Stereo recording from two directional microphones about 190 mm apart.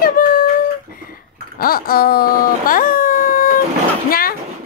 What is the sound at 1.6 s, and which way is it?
Speech, 50° left (ahead or behind).